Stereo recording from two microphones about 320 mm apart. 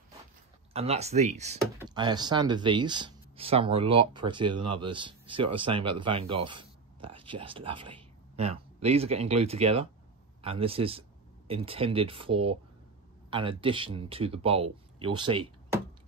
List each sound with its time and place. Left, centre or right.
0.7 s speech: centre